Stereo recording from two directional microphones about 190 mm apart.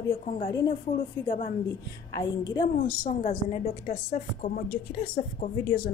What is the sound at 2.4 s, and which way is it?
Speech, 25° left (ahead or behind).